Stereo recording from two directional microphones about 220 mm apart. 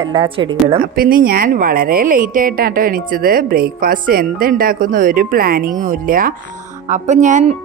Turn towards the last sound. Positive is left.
turn(degrees=-35)  # may be behind; listen again after turning